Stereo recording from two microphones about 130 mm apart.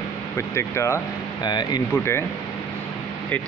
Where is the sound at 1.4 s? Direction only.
35° left (ahead or behind).